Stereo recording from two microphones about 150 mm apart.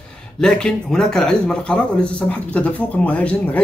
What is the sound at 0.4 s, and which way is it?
A man's voice, 5° left (ahead or behind).